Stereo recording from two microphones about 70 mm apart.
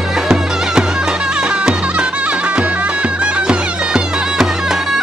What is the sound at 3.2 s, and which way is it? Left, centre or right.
Music, centre.